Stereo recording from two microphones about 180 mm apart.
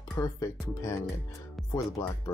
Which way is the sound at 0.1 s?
20° left (ahead or behind).